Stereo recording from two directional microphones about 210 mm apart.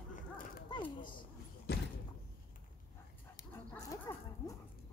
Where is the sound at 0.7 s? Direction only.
20° left (ahead or behind).